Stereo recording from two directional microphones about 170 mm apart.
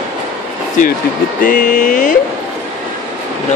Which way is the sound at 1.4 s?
55° left (ahead or behind).